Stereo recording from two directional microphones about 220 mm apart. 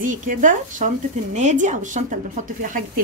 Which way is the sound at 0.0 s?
35° right (ahead or behind).